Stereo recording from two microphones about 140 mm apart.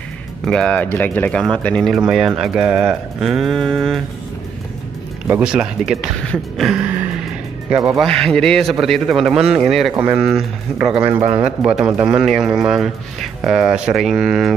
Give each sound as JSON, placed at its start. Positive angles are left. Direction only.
{"t": 0.5, "sound": "speech", "side_deg": 5}
{"t": 2.0, "sound": "speech", "side_deg": -5}
{"t": 5.3, "sound": "a man's voice", "side_deg": -5}
{"t": 8.0, "sound": "speech", "side_deg": 5}
{"t": 9.9, "sound": "a man's voice", "side_deg": -15}
{"t": 10.2, "sound": "a man's voice", "side_deg": -5}